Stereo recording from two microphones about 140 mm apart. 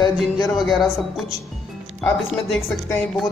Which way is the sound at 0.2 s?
Centre (ahead or behind).